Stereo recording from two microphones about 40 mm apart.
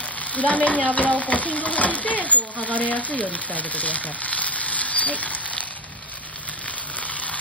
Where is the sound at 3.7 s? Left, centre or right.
Left.